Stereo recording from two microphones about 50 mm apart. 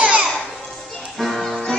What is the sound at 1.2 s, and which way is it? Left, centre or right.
Music, centre.